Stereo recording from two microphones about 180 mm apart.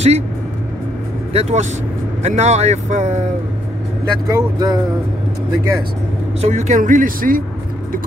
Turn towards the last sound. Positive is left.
turn(degrees=-50)  # may be behind; listen again after turning